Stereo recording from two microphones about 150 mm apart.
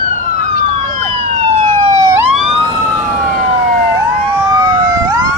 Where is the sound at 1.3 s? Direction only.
45° right (ahead or behind); by 2.2 s 25° right (ahead or behind).